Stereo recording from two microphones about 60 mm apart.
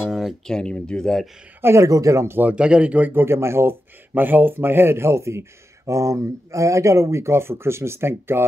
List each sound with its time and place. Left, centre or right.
0.5 s speech: centre
1.6 s speech: right
1.9 s speech: right
2.4 s speech: centre
3.1 s speech: right
4.1 s speech: right